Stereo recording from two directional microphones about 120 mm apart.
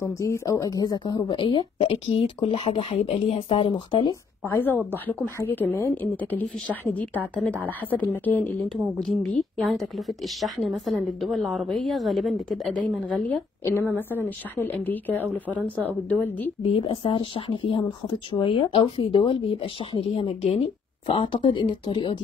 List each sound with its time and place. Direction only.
0.0 s speech: 25° left (ahead or behind); by 4.1 s 45° left (ahead or behind)
4.1 s a woman's voice: 20° left (ahead or behind)
9.2 s a woman's voice: centre (ahead or behind)
13.2 s a woman's voice: 15° left (ahead or behind)
16.6 s speech: 50° left (ahead or behind)